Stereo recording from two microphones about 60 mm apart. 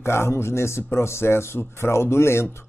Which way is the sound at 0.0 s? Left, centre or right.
Left.